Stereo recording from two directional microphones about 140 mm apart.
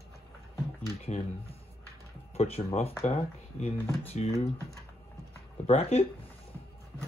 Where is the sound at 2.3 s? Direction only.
45° left (ahead or behind).